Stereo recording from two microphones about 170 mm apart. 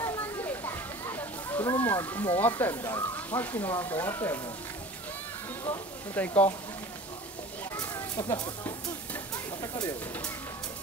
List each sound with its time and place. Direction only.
0.0 s children playing: 15° left (ahead or behind)
2.3 s speech: 10° left (ahead or behind)
6.1 s speech: 10° left (ahead or behind)
7.7 s chicken: 25° left (ahead or behind)
9.3 s stir: 20° left (ahead or behind)